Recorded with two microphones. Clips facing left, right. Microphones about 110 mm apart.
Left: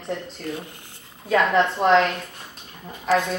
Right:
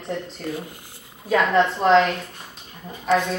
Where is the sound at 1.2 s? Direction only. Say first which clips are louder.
Right 1 dB; centre (ahead or behind).